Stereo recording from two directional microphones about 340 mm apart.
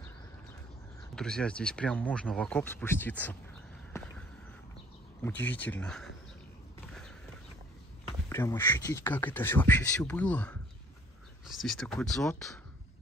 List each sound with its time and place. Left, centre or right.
1.1 s speech: centre
5.2 s speech: centre
6.9 s a sound: centre
8.3 s speech: centre